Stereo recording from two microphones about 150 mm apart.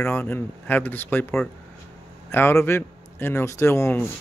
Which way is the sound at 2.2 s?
15° left (ahead or behind).